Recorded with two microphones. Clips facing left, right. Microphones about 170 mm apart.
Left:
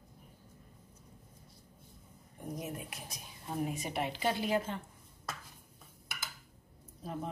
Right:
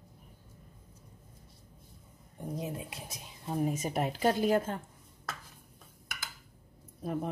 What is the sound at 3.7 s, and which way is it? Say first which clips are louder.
A woman's voice: right 4 dB; 40° right (ahead or behind).